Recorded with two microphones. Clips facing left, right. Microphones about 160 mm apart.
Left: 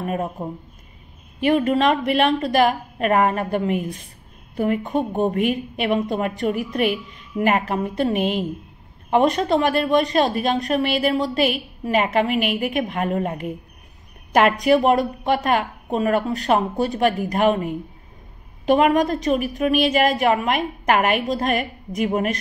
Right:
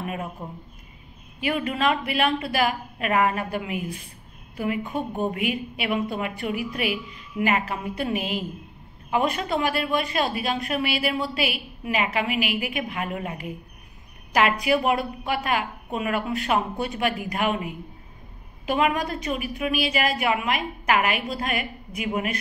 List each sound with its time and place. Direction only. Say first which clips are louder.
0.0 s speech: left 6 dB; 45° left (ahead or behind)
1.4 s a woman's voice: left 7 dB; 45° left (ahead or behind)
4.9 s speech: left 6 dB; 20° left (ahead or behind)
5.5 s a woman's voice: left 5 dB; 45° left (ahead or behind)
8.2 s a woman's voice: left 7 dB; 5° right (ahead or behind)
9.1 s a woman's voice: left 7 dB; 40° left (ahead or behind)